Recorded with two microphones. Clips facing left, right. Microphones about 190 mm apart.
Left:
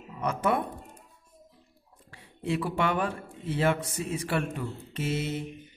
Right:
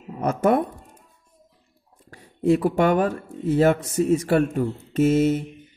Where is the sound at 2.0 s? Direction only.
45° right (ahead or behind).